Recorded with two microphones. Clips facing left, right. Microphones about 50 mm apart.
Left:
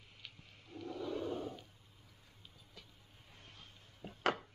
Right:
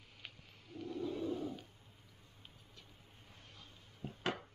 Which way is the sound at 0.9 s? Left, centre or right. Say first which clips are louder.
Right 1 dB; left.